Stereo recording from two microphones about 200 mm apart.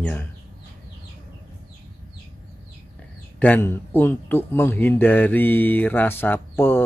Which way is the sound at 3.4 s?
10° left (ahead or behind).